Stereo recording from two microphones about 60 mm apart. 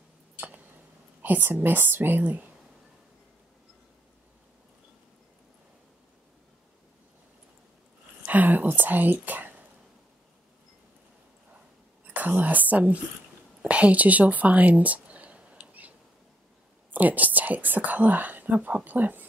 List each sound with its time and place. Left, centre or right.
1.2 s a woman's voice: right
8.3 s speech: right
12.4 s speech: right
13.6 s a sound: right
16.9 s speech: right